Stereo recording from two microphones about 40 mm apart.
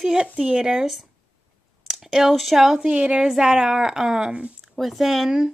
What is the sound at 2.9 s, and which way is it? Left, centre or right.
Speech, right.